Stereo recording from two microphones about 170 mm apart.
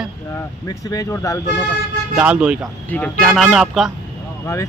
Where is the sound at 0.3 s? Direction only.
20° left (ahead or behind).